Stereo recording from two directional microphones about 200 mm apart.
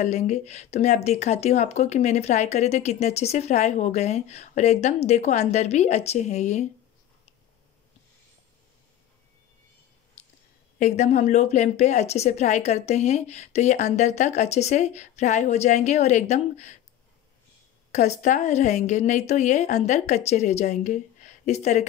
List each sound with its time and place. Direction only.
0.0 s speech: 35° left (ahead or behind)
10.8 s speech: 35° left (ahead or behind)
17.9 s speech: 35° left (ahead or behind)